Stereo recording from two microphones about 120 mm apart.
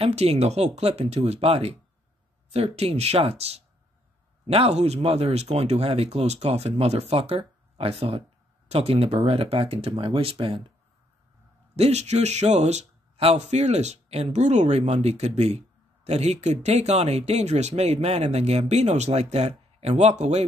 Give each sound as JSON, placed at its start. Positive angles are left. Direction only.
{"t": 0.0, "sound": "speech", "side_deg": -60}
{"t": 11.7, "sound": "speech", "side_deg": -65}